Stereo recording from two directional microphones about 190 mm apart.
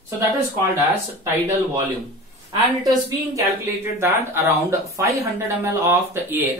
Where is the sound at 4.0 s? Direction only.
15° right (ahead or behind).